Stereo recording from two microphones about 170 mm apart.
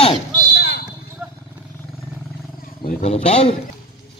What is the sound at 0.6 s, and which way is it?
Basketball bounce, 70° left (ahead or behind).